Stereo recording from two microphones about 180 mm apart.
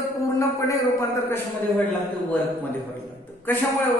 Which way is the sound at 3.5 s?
10° left (ahead or behind).